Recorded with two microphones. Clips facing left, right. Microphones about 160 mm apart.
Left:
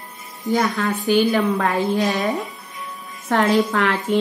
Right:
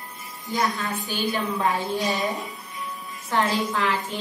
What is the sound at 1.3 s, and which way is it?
A woman's voice, 85° left.